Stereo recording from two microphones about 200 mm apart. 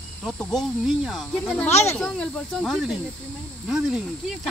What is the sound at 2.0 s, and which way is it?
A woman's voice, 5° left (ahead or behind).